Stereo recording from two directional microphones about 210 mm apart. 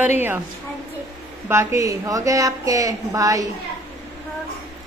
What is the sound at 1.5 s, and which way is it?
Speech, 15° right (ahead or behind).